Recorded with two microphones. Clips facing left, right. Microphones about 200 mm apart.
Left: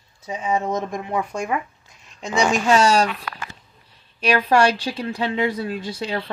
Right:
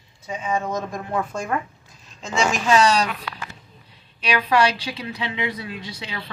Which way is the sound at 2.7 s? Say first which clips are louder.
Even; 45° left (ahead or behind).